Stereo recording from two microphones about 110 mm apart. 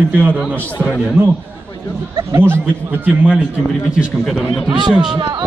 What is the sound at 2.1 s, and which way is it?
A man's voice, 25° right (ahead or behind).